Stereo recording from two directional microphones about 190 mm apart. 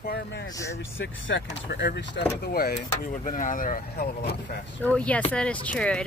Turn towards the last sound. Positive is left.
turn(degrees=5)  # may be behind; listen again after turning